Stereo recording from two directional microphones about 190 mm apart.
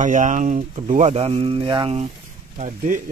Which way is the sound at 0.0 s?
40° right (ahead or behind).